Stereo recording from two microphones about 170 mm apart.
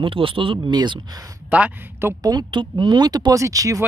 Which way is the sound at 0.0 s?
30° right (ahead or behind).